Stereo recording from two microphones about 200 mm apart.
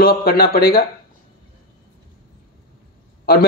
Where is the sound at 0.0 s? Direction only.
50° left (ahead or behind).